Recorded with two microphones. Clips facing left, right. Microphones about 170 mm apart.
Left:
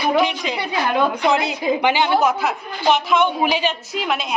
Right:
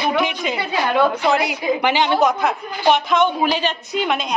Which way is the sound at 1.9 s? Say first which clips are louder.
Right 1 dB; 10° left (ahead or behind).